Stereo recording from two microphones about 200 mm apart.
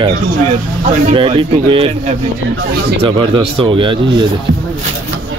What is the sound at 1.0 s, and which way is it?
Speech, 25° right (ahead or behind).